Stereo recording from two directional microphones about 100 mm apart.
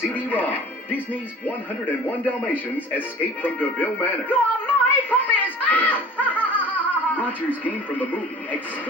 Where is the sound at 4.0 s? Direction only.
20° left (ahead or behind).